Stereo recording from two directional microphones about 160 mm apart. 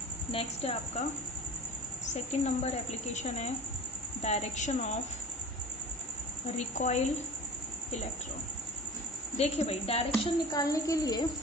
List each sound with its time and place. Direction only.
0.3 s a woman's voice: 35° left (ahead or behind)
2.1 s a woman's voice: 45° left (ahead or behind)
6.8 s a woman's voice: 45° left (ahead or behind)
9.4 s a woman's voice: 40° left (ahead or behind)
10.5 s a woman's voice: 20° left (ahead or behind)